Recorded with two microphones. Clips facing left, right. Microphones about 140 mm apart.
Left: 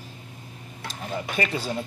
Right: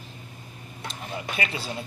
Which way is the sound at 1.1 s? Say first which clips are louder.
Left 4 dB; 40° left (ahead or behind).